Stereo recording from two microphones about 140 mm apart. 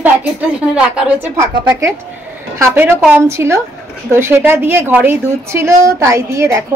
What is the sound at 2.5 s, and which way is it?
A woman's voice, 20° right (ahead or behind).